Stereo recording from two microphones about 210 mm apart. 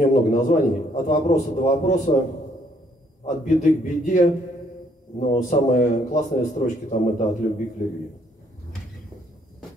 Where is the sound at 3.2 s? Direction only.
35° left (ahead or behind).